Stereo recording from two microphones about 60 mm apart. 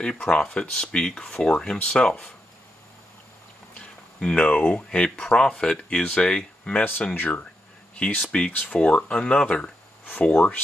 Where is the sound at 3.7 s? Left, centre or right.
Centre.